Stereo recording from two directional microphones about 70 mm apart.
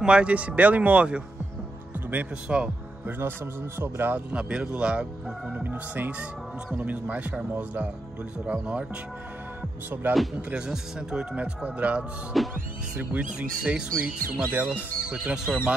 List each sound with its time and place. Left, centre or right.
0.0 s a man's voice: centre
2.4 s speech: centre
3.1 s a man's voice: right
4.3 s speech: centre
5.5 s a man's voice: right
10.0 s a man's voice: right
10.5 s speech: centre
14.5 s a man's voice: right
15.0 s speech: centre